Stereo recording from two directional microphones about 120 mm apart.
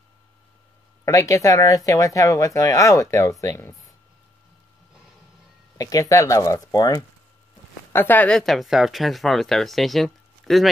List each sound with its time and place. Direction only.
1.0 s speech: 25° left (ahead or behind)
5.8 s speech: 30° left (ahead or behind)
7.9 s speech: 15° left (ahead or behind); by 10.7 s centre (ahead or behind)